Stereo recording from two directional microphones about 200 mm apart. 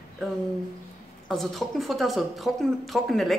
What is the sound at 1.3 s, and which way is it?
A woman's voice, centre (ahead or behind).